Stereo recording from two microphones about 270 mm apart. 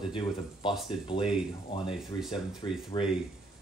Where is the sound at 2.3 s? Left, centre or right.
Centre.